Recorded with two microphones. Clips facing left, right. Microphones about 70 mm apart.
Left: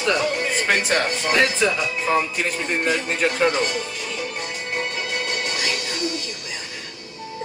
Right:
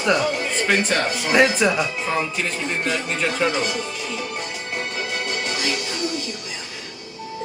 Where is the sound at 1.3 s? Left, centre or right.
Centre.